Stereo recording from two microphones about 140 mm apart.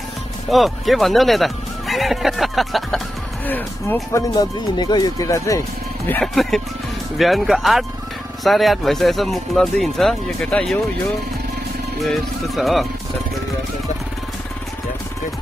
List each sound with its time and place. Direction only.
0.5 s speech: centre (ahead or behind)
3.4 s speech: 15° left (ahead or behind)
4.4 s speech: 30° left (ahead or behind)
6.2 s speech: centre (ahead or behind)
12.0 s speech: centre (ahead or behind)